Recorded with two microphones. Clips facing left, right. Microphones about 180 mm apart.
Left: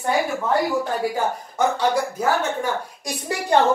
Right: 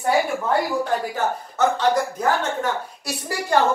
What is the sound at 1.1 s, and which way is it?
Speech, 10° left (ahead or behind).